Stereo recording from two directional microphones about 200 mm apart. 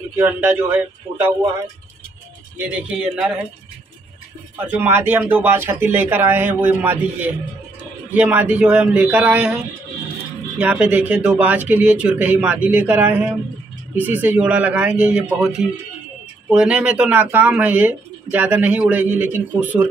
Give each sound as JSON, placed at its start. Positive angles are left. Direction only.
{"t": 0.2, "sound": "speech", "side_deg": -10}
{"t": 2.5, "sound": "speech", "side_deg": -5}
{"t": 4.6, "sound": "speech", "side_deg": -10}
{"t": 10.6, "sound": "speech", "side_deg": -5}